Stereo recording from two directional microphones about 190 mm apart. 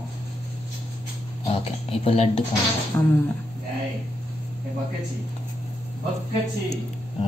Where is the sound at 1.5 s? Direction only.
30° left (ahead or behind).